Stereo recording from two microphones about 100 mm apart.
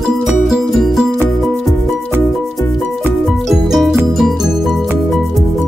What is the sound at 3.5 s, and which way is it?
Music, centre (ahead or behind).